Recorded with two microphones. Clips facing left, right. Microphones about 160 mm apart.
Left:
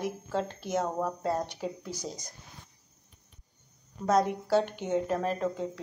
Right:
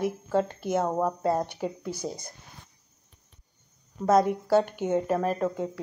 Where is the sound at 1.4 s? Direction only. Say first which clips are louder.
Right 4 dB; 55° right (ahead or behind).